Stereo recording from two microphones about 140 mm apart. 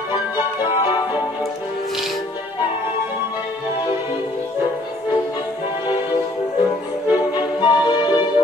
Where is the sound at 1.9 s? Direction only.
Centre (ahead or behind).